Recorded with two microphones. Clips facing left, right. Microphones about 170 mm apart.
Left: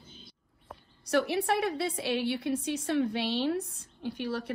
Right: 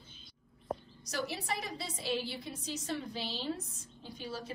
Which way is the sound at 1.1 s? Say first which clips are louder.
Left 10 dB; 65° left (ahead or behind).